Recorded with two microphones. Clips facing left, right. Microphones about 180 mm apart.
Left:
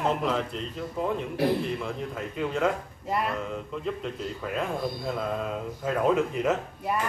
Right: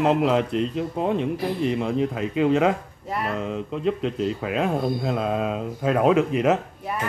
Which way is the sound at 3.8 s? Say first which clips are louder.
Right 11 dB; 90° right.